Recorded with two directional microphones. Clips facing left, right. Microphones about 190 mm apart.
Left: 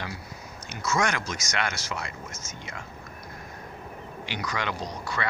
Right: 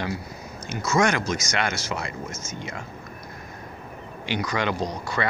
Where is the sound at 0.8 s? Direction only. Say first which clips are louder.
Right 5 dB; 25° right (ahead or behind).